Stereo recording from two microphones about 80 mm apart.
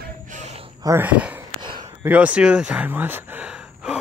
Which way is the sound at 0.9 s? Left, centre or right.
Centre.